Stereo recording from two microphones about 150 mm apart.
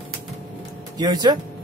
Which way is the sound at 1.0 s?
25° right (ahead or behind).